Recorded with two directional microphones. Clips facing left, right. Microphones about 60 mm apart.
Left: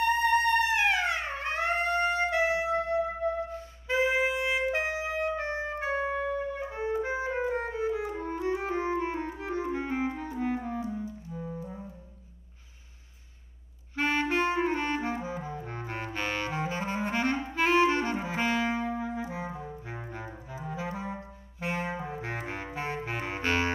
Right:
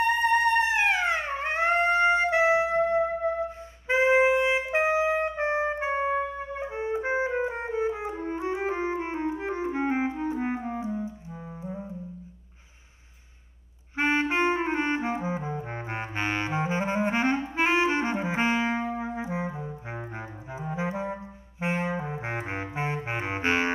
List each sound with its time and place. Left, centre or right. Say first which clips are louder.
0.2 s music: right 2 dB; right
13.9 s clarinet: right 3 dB; right